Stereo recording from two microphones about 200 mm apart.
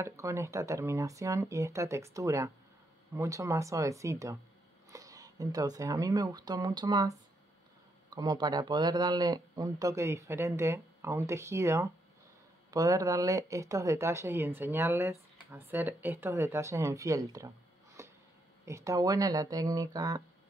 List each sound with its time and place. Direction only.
0.0 s speech: 15° right (ahead or behind)
18.0 s a sound: 15° right (ahead or behind)
18.7 s speech: 15° right (ahead or behind)